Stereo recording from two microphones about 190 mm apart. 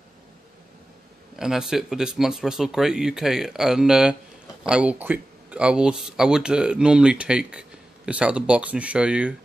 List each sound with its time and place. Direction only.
1.4 s speech: 5° right (ahead or behind)